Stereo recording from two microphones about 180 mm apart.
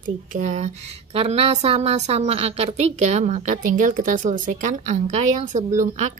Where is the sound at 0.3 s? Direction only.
40° right (ahead or behind).